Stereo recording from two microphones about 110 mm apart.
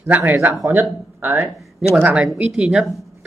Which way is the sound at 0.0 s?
15° right (ahead or behind).